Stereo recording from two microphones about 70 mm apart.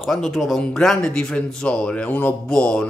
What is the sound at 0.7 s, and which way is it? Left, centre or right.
Speech, centre.